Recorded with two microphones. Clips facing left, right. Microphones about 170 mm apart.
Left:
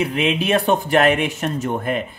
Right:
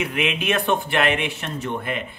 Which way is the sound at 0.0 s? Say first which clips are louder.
Left 4 dB; 35° left (ahead or behind).